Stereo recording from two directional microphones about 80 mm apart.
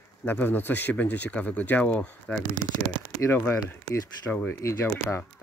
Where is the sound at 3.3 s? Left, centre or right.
Left.